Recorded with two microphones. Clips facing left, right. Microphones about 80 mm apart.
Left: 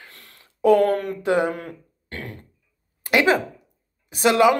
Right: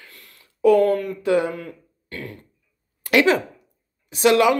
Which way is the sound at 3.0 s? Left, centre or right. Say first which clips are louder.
Right 1 dB; left.